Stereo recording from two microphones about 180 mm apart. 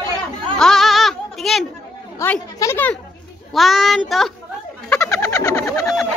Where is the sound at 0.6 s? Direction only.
Centre (ahead or behind).